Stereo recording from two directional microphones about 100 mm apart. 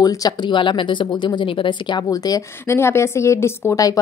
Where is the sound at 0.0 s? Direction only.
40° left (ahead or behind).